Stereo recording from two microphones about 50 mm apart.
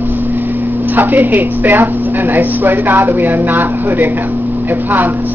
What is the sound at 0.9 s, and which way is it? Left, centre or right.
Speech, right.